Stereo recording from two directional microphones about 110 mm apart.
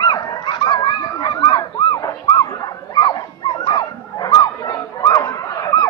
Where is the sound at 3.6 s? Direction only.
45° left (ahead or behind).